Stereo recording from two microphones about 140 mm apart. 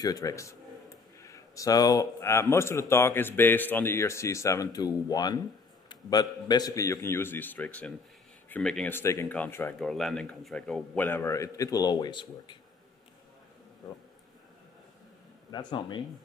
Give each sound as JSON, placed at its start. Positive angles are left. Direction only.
{"t": 0.0, "sound": "speech", "side_deg": 25}
{"t": 8.9, "sound": "speech", "side_deg": 20}
{"t": 9.8, "sound": "speech", "side_deg": 5}
{"t": 15.5, "sound": "speech", "side_deg": 35}